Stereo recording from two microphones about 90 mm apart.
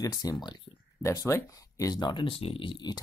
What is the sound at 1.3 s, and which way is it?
Speech, 35° left (ahead or behind).